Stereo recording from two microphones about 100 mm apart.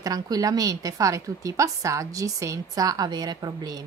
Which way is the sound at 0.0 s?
40° right (ahead or behind).